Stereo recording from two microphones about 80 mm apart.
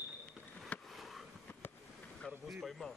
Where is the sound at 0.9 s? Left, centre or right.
Centre.